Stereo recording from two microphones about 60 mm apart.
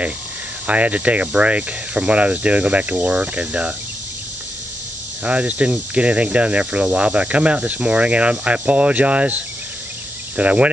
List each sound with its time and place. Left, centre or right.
0.7 s speech: right
5.2 s speech: right